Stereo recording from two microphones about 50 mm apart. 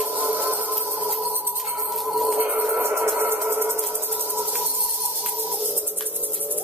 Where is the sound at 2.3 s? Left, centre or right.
Right.